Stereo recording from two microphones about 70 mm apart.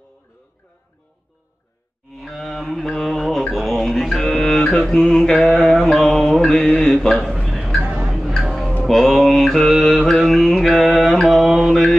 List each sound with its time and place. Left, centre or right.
2.0 s mantra: centre
7.8 s a sound: right
8.1 s music: centre
8.8 s mantra: centre